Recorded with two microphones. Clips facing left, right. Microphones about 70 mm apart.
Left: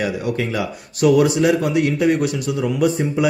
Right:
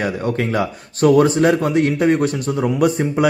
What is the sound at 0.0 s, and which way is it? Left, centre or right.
A man's voice, right.